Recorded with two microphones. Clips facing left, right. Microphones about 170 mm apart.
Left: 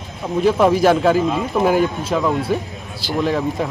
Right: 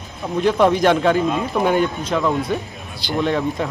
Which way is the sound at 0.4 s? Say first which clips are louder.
Left 1 dB; 5° left (ahead or behind).